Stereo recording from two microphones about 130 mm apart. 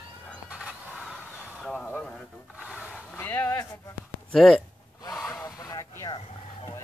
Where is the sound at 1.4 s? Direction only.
5° left (ahead or behind).